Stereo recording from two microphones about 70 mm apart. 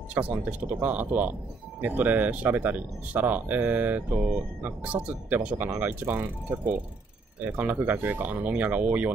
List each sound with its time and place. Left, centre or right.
0.1 s speech: right